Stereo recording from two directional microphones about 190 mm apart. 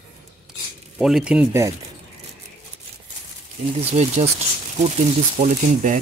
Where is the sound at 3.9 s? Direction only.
35° right (ahead or behind).